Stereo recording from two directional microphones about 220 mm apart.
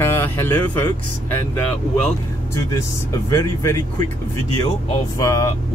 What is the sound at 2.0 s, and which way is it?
Speech, 5° left (ahead or behind).